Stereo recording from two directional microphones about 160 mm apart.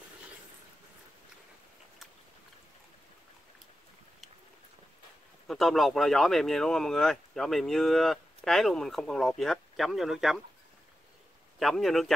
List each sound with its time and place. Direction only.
5.5 s speech: centre (ahead or behind)
11.6 s speech: centre (ahead or behind)